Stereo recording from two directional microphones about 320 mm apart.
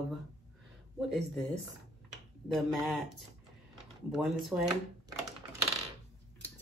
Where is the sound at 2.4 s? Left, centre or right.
Centre.